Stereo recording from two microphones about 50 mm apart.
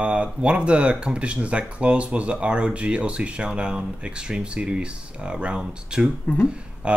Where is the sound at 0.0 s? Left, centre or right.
Right.